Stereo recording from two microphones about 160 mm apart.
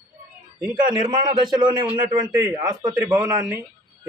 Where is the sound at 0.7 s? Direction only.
30° right (ahead or behind).